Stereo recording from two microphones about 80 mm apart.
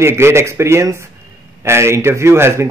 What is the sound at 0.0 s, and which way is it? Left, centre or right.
A man's voice, right.